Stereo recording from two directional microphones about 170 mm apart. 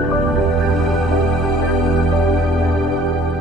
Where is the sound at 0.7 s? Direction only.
Centre (ahead or behind).